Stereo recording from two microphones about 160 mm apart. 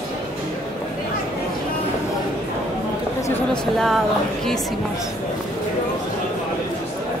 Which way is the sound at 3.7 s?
Centre (ahead or behind).